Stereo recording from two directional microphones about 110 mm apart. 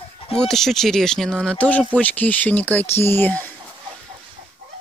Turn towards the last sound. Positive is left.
turn(degrees=15)  # may be behind; listen again after turning